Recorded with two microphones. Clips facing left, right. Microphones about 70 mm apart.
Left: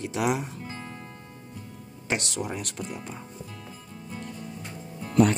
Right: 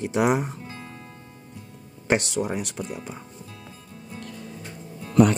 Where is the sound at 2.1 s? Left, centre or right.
Right.